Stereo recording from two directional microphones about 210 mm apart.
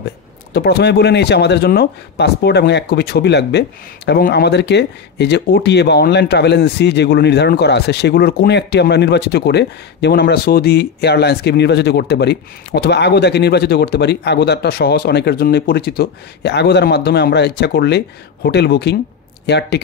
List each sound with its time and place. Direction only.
0.5 s speech: 50° left (ahead or behind)